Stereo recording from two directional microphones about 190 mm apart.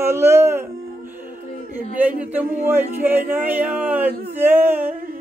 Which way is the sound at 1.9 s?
10° right (ahead or behind).